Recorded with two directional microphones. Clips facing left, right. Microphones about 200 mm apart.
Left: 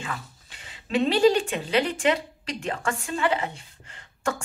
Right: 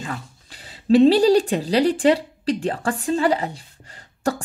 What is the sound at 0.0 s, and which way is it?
A woman's voice, 40° right (ahead or behind).